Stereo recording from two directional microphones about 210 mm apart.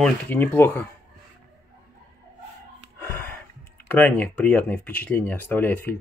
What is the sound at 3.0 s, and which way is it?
Speech, 10° left (ahead or behind).